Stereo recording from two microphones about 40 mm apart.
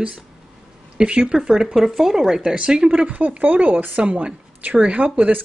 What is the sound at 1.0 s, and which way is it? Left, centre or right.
Speech, right.